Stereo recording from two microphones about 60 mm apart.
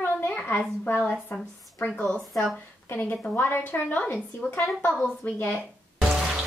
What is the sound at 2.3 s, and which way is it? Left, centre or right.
Speech, centre.